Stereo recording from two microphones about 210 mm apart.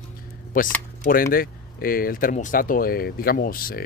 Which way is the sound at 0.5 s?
40° left (ahead or behind).